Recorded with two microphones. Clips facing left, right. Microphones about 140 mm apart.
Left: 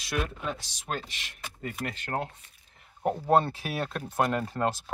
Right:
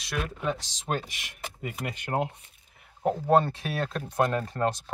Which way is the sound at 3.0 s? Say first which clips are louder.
Right 1 dB; 5° left (ahead or behind).